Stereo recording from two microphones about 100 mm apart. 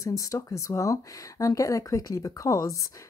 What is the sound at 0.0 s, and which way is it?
Speech, 35° left (ahead or behind).